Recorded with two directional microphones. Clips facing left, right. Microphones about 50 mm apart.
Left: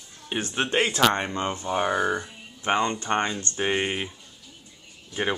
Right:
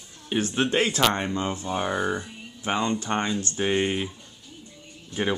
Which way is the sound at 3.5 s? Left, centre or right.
Centre.